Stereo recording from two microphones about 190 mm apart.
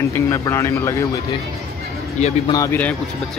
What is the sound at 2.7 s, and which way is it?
Speech, 5° left (ahead or behind).